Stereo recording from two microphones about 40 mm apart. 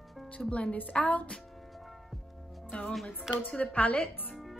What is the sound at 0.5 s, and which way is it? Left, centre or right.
Speech, left.